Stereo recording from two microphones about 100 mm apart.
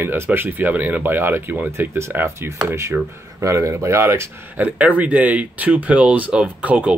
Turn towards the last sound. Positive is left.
turn(degrees=-15)  # may be behind; listen again after turning